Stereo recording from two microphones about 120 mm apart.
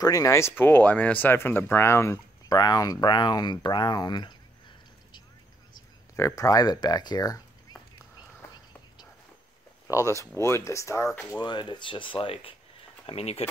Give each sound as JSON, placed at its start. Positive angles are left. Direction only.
{"t": 0.0, "sound": "speech", "side_deg": 30}
{"t": 6.1, "sound": "speech", "side_deg": 25}
{"t": 9.8, "sound": "speech", "side_deg": 25}